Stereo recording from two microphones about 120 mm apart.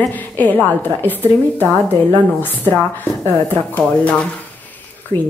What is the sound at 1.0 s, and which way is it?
A woman's voice, 15° left (ahead or behind).